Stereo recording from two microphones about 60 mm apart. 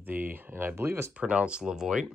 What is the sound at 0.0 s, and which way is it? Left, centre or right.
Speech, right.